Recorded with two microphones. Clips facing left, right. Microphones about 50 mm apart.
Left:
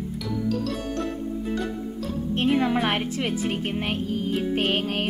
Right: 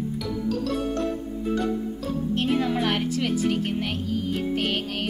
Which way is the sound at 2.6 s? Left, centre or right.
Left.